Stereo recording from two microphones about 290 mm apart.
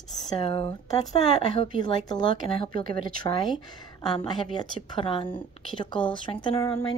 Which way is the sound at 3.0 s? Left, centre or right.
Right.